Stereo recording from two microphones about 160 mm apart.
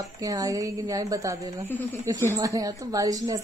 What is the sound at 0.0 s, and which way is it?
Speech, 20° right (ahead or behind).